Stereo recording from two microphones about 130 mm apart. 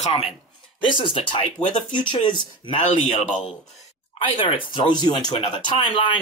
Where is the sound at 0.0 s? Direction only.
50° left (ahead or behind).